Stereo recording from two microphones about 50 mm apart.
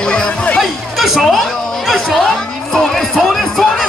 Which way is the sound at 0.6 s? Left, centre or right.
Centre.